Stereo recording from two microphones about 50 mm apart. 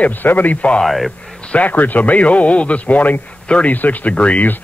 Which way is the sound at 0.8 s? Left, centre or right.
Centre.